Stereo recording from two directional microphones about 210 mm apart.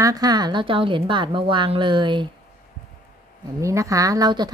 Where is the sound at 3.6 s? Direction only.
15° right (ahead or behind).